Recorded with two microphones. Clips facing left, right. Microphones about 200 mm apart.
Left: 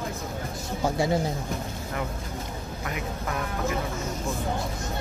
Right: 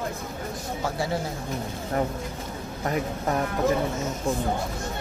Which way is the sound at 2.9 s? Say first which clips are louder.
Right 7 dB; 40° right (ahead or behind).